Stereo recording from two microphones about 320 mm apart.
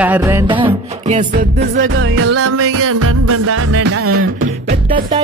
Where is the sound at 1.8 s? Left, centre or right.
Right.